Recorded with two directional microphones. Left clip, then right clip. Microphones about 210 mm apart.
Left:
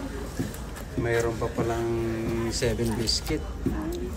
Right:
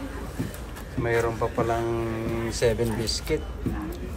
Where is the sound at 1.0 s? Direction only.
5° left (ahead or behind).